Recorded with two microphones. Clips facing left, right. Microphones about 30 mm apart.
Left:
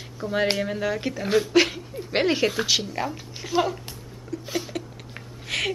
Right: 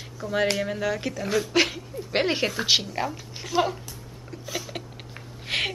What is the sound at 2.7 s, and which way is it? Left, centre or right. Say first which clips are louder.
Speech: right 1 dB; centre.